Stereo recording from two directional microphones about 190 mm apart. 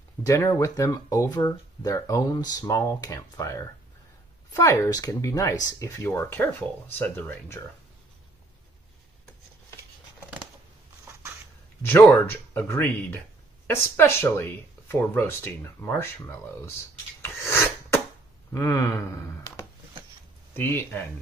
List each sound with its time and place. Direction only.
0.2 s speech: 15° left (ahead or behind)
11.8 s speech: 10° left (ahead or behind)
17.2 s sneeze: 15° left (ahead or behind)
18.5 s speech: 15° left (ahead or behind)